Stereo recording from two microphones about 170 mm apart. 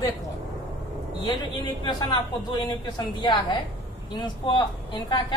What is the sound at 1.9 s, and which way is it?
A woman's voice, 25° left (ahead or behind).